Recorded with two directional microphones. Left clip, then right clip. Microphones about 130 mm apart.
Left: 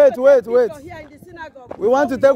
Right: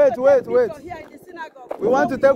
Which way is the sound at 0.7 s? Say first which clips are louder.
Right 1 dB; 5° left (ahead or behind).